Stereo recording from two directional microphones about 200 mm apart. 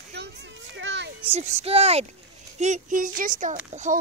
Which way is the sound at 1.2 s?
30° right (ahead or behind).